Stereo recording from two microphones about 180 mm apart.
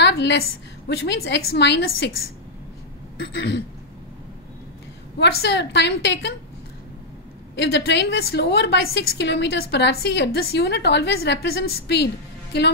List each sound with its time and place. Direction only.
0.0 s a woman's voice: 75° left (ahead or behind)
3.2 s speech: 80° left
5.2 s a woman's voice: 70° left (ahead or behind)
7.5 s a woman's voice: 70° left (ahead or behind)